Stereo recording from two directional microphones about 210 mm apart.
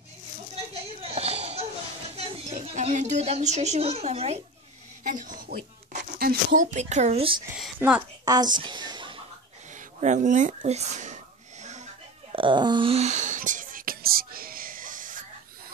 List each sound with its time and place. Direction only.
1.0 s a sound: 30° right (ahead or behind)
2.1 s a woman's voice: 30° right (ahead or behind)
7.5 s a woman's voice: 5° right (ahead or behind)
8.3 s a woman's voice: 20° right (ahead or behind)
9.8 s speech: 35° right (ahead or behind)
11.6 s wheeze: 35° right (ahead or behind)